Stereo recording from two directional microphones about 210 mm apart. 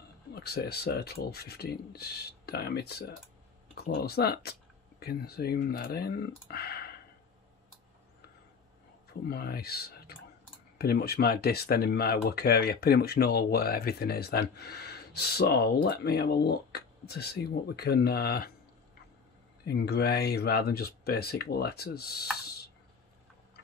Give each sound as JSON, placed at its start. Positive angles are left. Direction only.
{"t": 0.3, "sound": "speech", "side_deg": 50}
{"t": 9.3, "sound": "speech", "side_deg": 50}
{"t": 19.6, "sound": "speech", "side_deg": 50}